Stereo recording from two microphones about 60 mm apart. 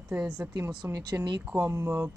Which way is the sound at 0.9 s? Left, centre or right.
Right.